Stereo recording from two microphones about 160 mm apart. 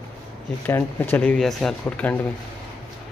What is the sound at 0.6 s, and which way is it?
Speech, 10° left (ahead or behind).